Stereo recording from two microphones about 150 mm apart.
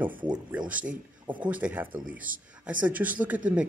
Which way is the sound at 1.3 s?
10° right (ahead or behind).